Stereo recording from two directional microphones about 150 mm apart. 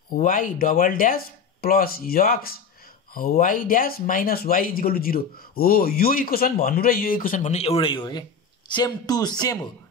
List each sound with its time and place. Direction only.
0.1 s speech: 65° left (ahead or behind)
3.2 s speech: 65° left (ahead or behind); by 9.7 s 25° left (ahead or behind)